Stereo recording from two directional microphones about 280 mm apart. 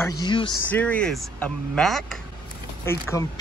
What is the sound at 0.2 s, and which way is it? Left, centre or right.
Speech, centre.